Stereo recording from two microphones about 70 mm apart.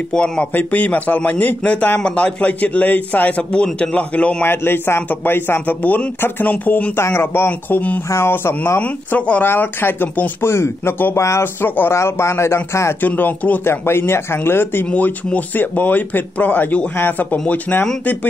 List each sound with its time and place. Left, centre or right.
0.1 s a man's voice: centre
4.5 s a man's voice: left
7.0 s speech: left
8.1 s speech: left
8.8 s a man's voice: centre
10.4 s speech: left
11.1 s speech: left
11.6 s a man's voice: left
11.9 s speech: left
13.0 s a man's voice: left
13.8 s speech: left
14.9 s a man's voice: left